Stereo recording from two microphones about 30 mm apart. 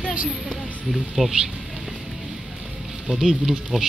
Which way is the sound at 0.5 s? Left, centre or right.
Centre.